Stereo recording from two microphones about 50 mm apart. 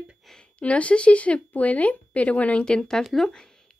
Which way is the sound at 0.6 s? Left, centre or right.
Left.